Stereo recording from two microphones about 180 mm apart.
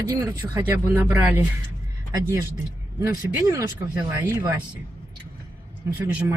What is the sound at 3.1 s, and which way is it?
Speech, 20° right (ahead or behind).